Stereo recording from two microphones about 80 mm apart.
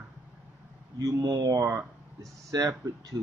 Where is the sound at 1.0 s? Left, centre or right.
Right.